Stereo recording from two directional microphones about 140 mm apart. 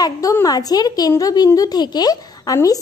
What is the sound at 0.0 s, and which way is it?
A child's voice, 25° left (ahead or behind).